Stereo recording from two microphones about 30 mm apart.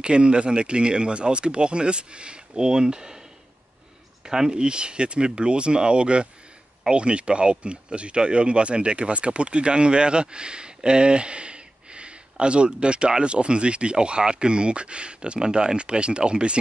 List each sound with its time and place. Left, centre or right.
0.0 s speech: right
4.2 s speech: right
15.4 s speech: right